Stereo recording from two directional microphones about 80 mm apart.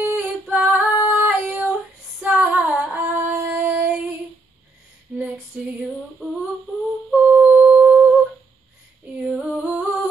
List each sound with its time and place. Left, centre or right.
0.0 s female singing: right
6.2 s humming: centre
9.2 s female singing: centre